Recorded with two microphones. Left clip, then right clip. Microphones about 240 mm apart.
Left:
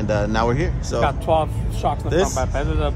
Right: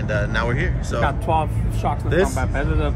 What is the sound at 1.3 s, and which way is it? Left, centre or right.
Speech, left.